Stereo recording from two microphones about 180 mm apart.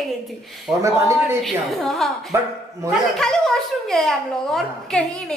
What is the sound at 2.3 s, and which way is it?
Speech, 15° right (ahead or behind).